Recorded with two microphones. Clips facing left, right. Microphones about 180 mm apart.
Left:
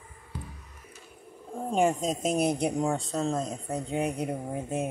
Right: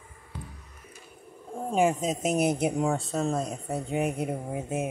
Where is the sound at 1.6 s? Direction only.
5° right (ahead or behind).